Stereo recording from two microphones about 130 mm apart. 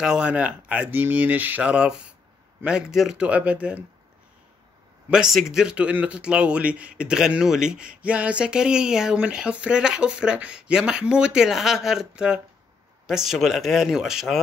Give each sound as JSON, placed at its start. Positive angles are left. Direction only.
{"t": 0.0, "sound": "speech", "side_deg": -5}
{"t": 5.1, "sound": "speech", "side_deg": -5}